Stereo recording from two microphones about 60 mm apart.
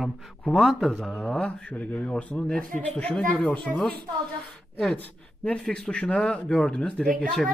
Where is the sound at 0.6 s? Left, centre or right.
Centre.